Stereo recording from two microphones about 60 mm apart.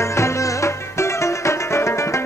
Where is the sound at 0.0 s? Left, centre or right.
Left.